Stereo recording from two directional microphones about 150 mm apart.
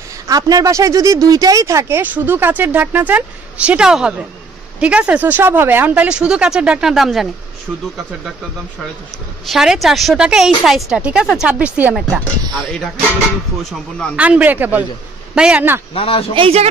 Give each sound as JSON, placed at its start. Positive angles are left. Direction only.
{"t": 0.3, "sound": "speech", "side_deg": -25}
{"t": 9.5, "sound": "speech", "side_deg": 0}
{"t": 12.5, "sound": "speech", "side_deg": 5}
{"t": 14.1, "sound": "speech", "side_deg": -10}
{"t": 15.9, "sound": "a man's voice", "side_deg": 40}
{"t": 16.3, "sound": "speech", "side_deg": -40}